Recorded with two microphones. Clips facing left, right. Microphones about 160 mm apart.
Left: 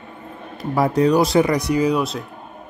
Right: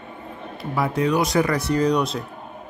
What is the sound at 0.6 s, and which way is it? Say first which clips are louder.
Speech: left 5 dB; 40° left (ahead or behind).